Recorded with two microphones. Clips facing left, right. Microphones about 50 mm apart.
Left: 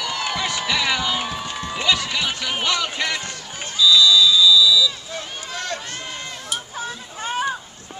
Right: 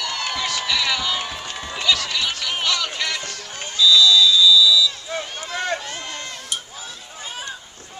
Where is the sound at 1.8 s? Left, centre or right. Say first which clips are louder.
Even; centre.